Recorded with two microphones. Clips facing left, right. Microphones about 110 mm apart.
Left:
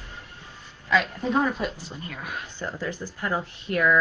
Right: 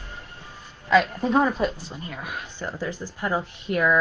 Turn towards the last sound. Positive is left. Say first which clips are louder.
# right 1 dB
turn(degrees=-20)  # may be behind; listen again after turning